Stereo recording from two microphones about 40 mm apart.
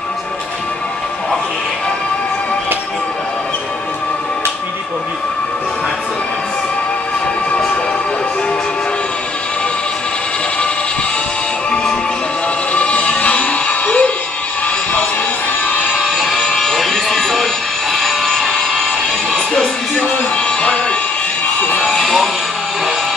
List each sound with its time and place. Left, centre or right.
12.7 s music: left
16.2 s music: centre
17.9 s a sound: centre
19.6 s music: left
21.8 s music: centre